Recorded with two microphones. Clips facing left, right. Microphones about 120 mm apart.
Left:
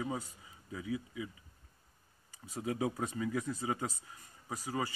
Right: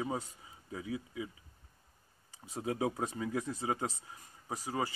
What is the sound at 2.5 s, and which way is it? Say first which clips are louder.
Speech: right 1 dB; 25° right (ahead or behind).